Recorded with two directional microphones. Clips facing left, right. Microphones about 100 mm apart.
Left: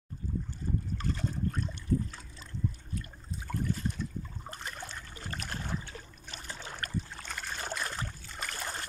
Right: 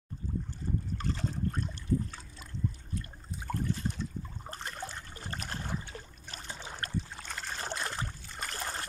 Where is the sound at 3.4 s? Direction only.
25° right (ahead or behind).